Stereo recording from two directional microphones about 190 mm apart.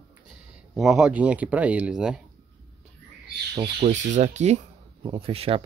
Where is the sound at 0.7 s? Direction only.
Centre (ahead or behind).